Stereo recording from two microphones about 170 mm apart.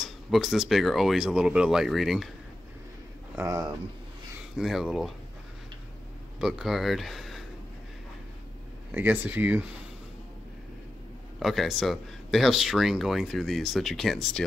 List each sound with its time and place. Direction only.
0.0 s speech: centre (ahead or behind)
3.3 s speech: 20° right (ahead or behind)
4.6 s speech: centre (ahead or behind)
6.4 s speech: centre (ahead or behind)
8.9 s speech: 10° right (ahead or behind)
11.3 s speech: centre (ahead or behind)